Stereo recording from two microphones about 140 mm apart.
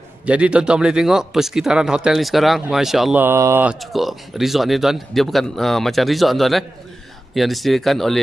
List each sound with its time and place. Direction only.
0.2 s a man's voice: 10° right (ahead or behind)
3.2 s speech: 20° right (ahead or behind)
3.6 s a man's voice: centre (ahead or behind)